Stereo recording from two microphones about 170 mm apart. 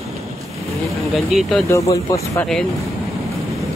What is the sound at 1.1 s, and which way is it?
Speech, centre (ahead or behind).